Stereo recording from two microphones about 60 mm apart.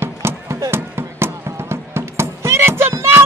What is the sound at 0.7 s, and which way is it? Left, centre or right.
Cat, right.